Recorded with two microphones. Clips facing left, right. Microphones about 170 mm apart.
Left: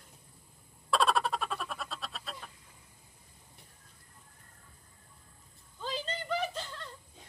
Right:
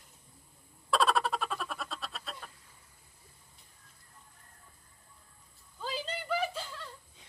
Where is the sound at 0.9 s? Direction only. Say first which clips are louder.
Even; centre (ahead or behind).